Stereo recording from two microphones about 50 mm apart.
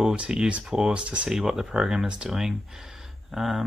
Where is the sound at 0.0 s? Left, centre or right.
Right.